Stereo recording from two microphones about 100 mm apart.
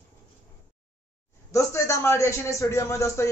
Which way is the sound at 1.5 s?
30° left (ahead or behind).